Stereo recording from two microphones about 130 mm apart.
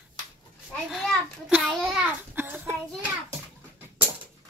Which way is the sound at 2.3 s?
15° right (ahead or behind).